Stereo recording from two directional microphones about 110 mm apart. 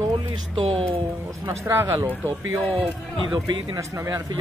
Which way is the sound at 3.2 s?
40° right (ahead or behind).